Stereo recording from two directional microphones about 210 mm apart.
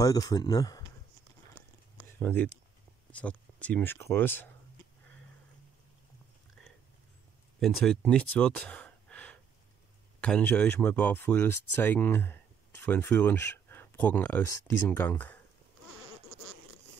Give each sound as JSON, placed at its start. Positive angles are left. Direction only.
{"t": 0.0, "sound": "speech", "side_deg": 15}
{"t": 2.1, "sound": "speech", "side_deg": 10}
{"t": 7.6, "sound": "speech", "side_deg": 5}